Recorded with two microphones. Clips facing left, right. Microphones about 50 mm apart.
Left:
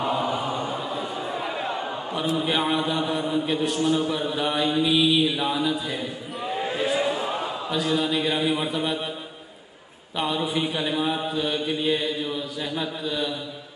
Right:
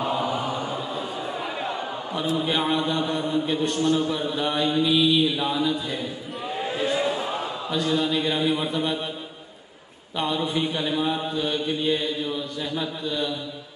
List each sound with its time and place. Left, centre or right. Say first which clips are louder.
0.0 s chant: even; centre
0.7 s a sound: left 1 dB; centre
1.1 s a man's voice: left 1 dB; centre
10.1 s mantra: even; centre